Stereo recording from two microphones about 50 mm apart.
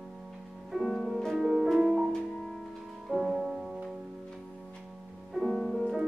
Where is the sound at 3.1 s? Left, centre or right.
Centre.